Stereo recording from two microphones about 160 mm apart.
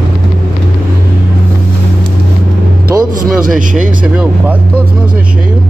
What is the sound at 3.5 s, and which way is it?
Speech, 55° right (ahead or behind).